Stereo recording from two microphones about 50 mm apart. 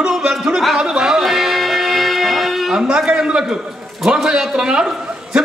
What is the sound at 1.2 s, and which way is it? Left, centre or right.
Music, centre.